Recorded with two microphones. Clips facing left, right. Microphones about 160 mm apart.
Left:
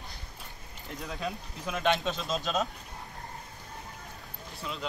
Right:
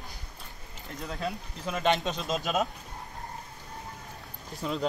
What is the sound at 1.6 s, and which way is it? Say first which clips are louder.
Speech: right 1 dB; centre (ahead or behind).